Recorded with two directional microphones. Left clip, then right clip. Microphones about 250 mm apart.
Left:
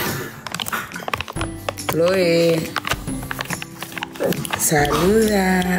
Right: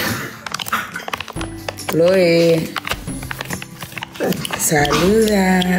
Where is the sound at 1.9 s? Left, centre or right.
Centre.